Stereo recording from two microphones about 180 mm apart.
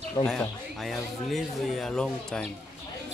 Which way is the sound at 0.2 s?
20° left (ahead or behind).